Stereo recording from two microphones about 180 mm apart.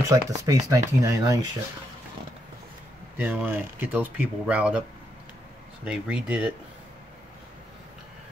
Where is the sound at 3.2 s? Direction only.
10° right (ahead or behind).